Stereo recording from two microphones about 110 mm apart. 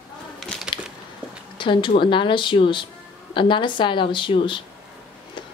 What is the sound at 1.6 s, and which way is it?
Speech, 45° left (ahead or behind).